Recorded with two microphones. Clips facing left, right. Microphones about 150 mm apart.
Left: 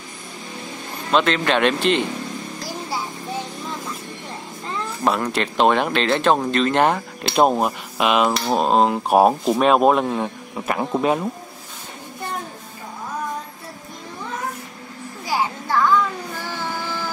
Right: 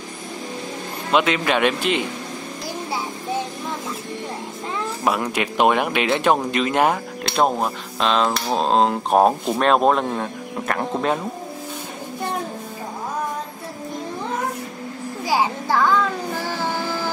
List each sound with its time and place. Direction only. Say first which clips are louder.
1.1 s speech: left 1 dB; 10° right (ahead or behind)
5.0 s speech: left 1 dB; 10° right (ahead or behind)
7.2 s speech: left 3 dB; 10° left (ahead or behind)